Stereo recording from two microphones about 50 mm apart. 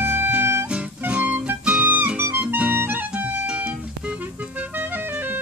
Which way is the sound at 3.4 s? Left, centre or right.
Right.